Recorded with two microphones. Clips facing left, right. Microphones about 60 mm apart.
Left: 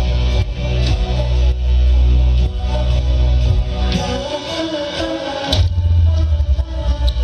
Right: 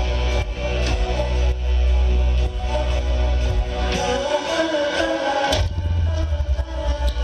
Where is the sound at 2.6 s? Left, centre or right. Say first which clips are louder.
Right 1 dB; centre.